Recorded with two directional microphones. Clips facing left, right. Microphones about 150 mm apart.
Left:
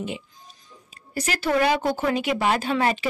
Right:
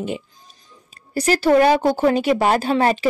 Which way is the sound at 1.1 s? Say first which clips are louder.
Right 8 dB; 35° right (ahead or behind).